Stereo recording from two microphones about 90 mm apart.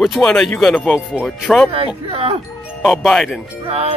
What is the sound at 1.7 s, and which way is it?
Speech, 90° right.